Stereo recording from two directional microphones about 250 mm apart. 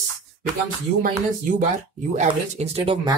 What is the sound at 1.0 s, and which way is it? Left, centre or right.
Speech, right.